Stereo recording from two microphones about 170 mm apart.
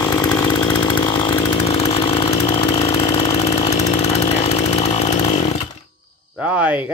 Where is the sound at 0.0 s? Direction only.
20° left (ahead or behind).